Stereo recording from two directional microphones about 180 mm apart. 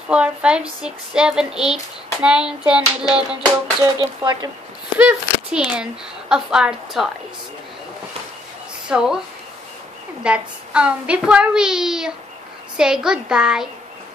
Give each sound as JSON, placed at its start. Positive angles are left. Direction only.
{"t": 0.1, "sound": "speech", "side_deg": -5}
{"t": 3.8, "sound": "speech", "side_deg": -20}
{"t": 4.9, "sound": "speech", "side_deg": -5}
{"t": 8.8, "sound": "speech", "side_deg": -5}
{"t": 10.2, "sound": "speech", "side_deg": -5}